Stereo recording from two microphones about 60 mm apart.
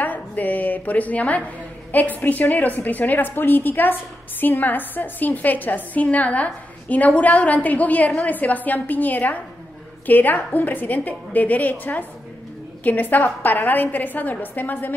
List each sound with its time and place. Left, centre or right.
0.0 s a woman's voice: left